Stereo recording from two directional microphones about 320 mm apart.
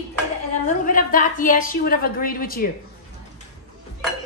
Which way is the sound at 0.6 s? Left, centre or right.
Left.